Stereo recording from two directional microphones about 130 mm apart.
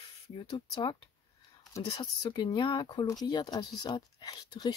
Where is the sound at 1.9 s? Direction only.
35° left (ahead or behind).